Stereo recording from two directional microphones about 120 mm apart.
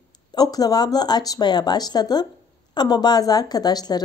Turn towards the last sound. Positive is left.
turn(degrees=35)  # may be behind; listen again after turning